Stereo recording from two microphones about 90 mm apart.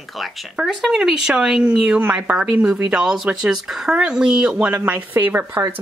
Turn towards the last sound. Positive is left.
turn(degrees=-20)  # may be behind; listen again after turning